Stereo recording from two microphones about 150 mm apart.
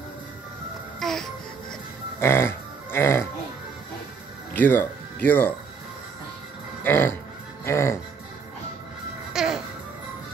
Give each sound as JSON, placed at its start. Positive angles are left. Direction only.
{"t": 0.9, "sound": "music", "side_deg": 0}
{"t": 2.1, "sound": "a sound", "side_deg": 15}
{"t": 4.6, "sound": "speech", "side_deg": 10}
{"t": 6.8, "sound": "music", "side_deg": 15}
{"t": 9.3, "sound": "music", "side_deg": -5}